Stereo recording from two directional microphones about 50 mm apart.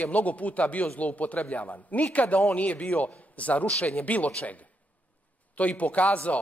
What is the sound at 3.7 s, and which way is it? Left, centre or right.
Speech, centre.